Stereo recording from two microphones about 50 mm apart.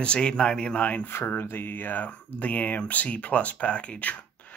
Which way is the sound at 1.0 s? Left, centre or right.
Left.